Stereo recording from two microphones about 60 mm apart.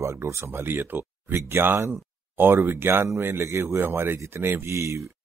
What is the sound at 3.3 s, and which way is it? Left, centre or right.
Speech, right.